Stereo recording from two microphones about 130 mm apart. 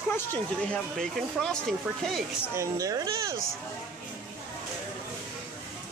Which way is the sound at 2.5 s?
25° right (ahead or behind).